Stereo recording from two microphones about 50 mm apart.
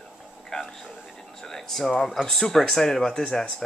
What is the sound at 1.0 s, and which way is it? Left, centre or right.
Speech, centre.